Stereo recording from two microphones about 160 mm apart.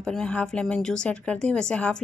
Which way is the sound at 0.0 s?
5° left (ahead or behind).